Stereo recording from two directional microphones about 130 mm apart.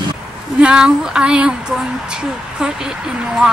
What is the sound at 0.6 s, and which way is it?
Speech, 5° right (ahead or behind).